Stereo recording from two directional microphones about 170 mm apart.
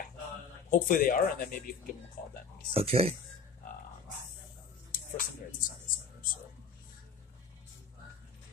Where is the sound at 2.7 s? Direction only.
35° right (ahead or behind).